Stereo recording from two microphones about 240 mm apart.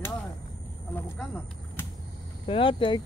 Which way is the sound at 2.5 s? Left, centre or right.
Left.